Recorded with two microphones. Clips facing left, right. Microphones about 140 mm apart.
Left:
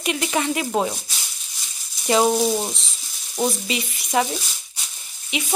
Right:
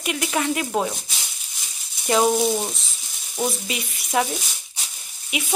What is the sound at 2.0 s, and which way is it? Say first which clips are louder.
A woman's voice: left 1 dB; centre (ahead or behind).